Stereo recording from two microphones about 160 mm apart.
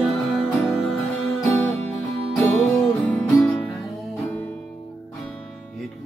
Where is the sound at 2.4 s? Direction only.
10° left (ahead or behind).